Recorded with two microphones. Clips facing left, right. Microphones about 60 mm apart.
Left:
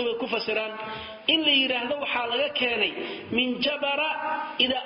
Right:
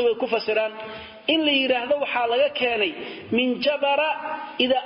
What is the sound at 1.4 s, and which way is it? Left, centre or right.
Speech, centre.